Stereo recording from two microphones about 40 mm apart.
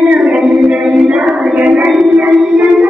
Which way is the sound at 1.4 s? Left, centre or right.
Right.